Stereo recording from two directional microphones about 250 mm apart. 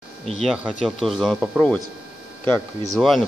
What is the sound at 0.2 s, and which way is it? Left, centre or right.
Speech, right.